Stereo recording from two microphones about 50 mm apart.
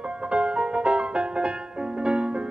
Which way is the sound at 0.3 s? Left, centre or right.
Right.